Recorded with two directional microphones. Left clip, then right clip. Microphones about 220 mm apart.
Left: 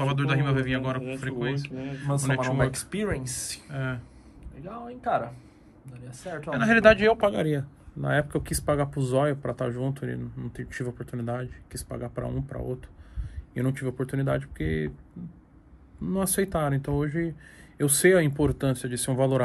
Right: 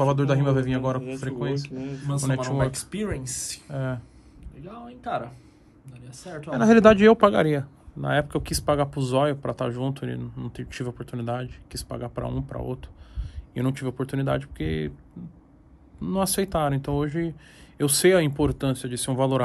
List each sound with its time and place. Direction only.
0.0 s a man's voice: 15° right (ahead or behind)
6.7 s speech: 30° right (ahead or behind)
8.0 s speech: centre (ahead or behind)
16.0 s speech: centre (ahead or behind)